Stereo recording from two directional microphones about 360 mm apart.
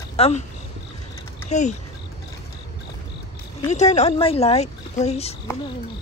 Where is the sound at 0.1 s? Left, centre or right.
Centre.